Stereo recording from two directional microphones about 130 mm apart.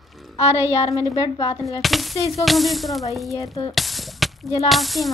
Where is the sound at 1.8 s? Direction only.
Centre (ahead or behind).